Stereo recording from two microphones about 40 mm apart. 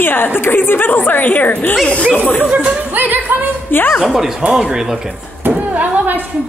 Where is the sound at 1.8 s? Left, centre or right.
Left.